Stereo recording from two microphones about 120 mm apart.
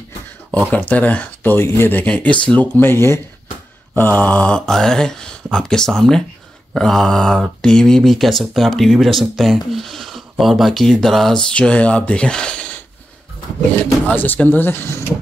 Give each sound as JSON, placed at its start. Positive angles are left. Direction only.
{"t": 0.5, "sound": "speech", "side_deg": 10}
{"t": 14.0, "sound": "speech", "side_deg": 15}